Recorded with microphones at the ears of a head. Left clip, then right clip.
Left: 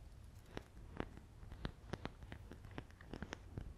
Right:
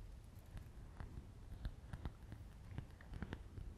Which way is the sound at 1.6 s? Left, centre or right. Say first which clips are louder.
Left 9 dB; left.